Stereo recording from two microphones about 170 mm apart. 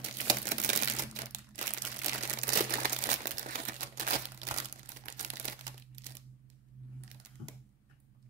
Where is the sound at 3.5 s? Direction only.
50° right (ahead or behind).